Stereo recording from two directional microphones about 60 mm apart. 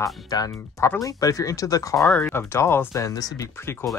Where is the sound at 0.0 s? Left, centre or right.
Left.